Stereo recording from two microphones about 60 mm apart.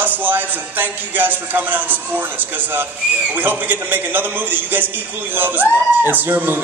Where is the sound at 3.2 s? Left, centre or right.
Right.